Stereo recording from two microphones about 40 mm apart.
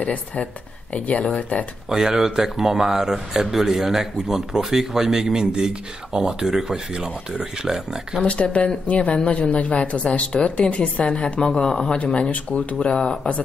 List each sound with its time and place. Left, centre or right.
0.0 s speech: left
1.9 s a man's voice: centre
5.4 s a man's voice: right
8.3 s speech: left
12.0 s speech: left
13.0 s speech: centre